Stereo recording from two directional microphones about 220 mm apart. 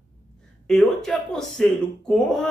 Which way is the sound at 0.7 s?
Centre (ahead or behind).